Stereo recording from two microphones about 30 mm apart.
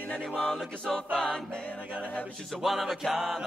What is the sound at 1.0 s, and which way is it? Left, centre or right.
Music, left.